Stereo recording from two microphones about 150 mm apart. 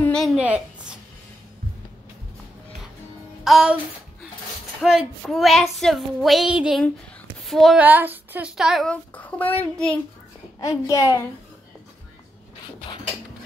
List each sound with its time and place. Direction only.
0.0 s a sound: 5° left (ahead or behind)
0.4 s a woman's voice: 10° right (ahead or behind)
3.4 s child singing: centre (ahead or behind)
4.8 s child singing: centre (ahead or behind)
7.4 s a sound: centre (ahead or behind)
7.8 s child singing: 10° right (ahead or behind); by 9.5 s 10° left (ahead or behind)
9.6 s a child's voice: 5° left (ahead or behind)
10.6 s a child's voice: 25° left (ahead or behind)